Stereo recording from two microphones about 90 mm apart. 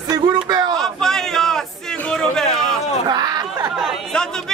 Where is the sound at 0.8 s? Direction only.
5° left (ahead or behind).